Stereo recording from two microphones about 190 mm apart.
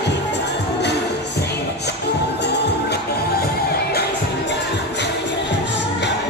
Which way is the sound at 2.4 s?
60° left (ahead or behind).